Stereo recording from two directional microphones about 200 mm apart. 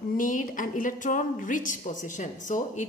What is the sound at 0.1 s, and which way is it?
Speech, 40° left (ahead or behind).